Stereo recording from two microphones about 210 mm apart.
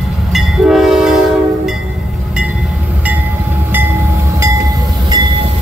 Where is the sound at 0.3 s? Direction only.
Centre (ahead or behind).